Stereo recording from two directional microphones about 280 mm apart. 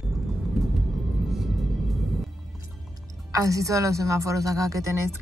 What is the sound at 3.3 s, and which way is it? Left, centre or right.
A woman's voice, centre.